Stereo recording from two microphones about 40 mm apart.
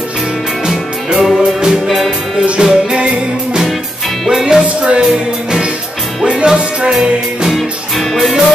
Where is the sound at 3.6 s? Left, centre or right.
Centre.